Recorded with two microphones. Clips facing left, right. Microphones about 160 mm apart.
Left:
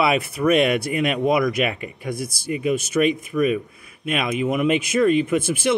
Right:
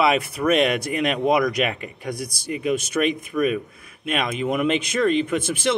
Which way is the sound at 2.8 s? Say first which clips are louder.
Left 3 dB; 50° right (ahead or behind).